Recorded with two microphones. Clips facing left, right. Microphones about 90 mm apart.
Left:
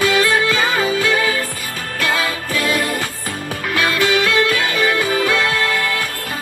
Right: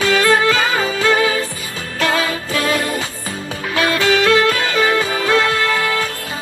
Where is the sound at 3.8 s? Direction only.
20° right (ahead or behind).